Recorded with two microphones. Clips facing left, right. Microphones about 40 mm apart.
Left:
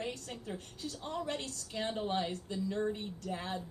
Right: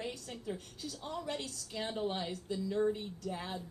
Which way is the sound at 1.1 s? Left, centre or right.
Left.